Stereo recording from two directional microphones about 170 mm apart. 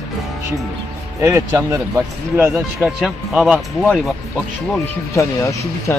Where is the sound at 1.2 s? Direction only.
15° right (ahead or behind); by 4.0 s centre (ahead or behind).